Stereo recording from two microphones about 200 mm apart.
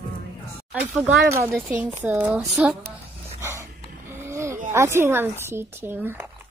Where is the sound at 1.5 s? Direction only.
10° right (ahead or behind).